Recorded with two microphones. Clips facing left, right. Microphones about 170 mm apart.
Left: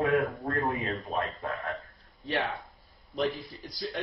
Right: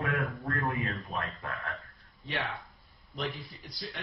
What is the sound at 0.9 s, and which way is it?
Speech, 40° left (ahead or behind).